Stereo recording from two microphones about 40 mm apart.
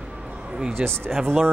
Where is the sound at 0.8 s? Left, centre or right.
Right.